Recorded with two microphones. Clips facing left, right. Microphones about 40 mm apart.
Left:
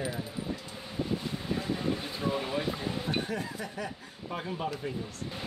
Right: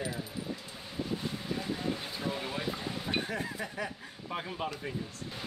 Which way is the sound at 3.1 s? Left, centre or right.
Centre.